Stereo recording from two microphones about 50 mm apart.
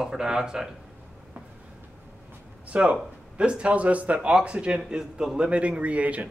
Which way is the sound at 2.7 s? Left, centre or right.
Right.